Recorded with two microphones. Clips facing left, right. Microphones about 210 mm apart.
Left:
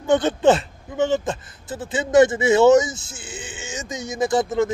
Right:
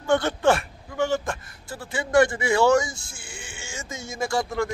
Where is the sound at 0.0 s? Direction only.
20° left (ahead or behind).